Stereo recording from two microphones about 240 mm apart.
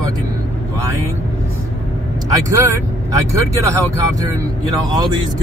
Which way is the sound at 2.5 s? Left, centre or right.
Centre.